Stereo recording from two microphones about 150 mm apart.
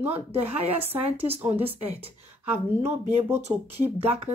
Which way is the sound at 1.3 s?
40° right (ahead or behind).